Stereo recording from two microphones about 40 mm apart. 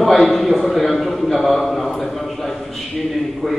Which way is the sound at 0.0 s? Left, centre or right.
Centre.